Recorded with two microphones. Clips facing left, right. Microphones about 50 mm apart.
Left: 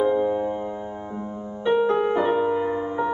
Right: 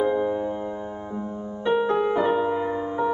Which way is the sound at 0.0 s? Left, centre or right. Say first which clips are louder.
Left 2 dB; centre.